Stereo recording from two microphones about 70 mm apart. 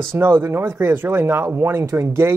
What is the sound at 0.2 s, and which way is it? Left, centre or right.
Speech, right.